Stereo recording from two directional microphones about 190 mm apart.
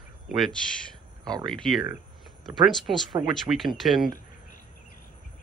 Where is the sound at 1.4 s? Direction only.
Centre (ahead or behind).